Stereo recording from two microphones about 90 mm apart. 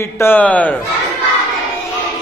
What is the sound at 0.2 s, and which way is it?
Speech, 20° left (ahead or behind).